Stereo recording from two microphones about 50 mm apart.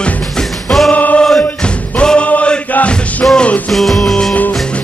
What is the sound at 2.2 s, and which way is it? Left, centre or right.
Music, left.